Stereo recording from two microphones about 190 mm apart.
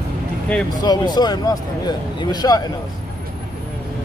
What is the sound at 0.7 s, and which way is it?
Speech, 20° left (ahead or behind).